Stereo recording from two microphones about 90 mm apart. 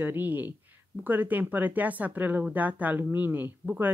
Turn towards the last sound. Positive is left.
turn(degrees=-20)  # may be behind; listen again after turning